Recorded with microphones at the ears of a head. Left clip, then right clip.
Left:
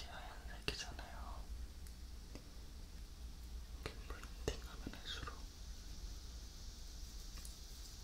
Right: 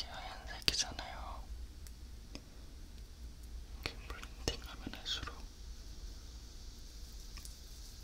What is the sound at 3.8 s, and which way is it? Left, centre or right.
Whispering, right.